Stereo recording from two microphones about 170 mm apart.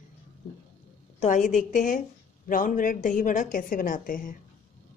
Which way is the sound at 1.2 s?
45° left (ahead or behind).